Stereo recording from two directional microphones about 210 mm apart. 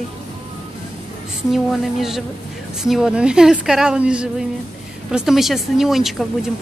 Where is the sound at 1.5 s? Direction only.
Centre (ahead or behind).